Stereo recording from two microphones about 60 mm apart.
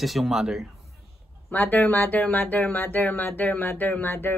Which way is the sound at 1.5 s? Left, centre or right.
Left.